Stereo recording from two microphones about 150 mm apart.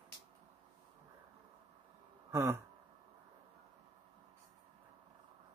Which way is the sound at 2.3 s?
15° right (ahead or behind).